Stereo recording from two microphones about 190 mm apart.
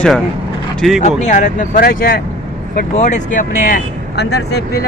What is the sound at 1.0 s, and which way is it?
Speech, 40° left (ahead or behind).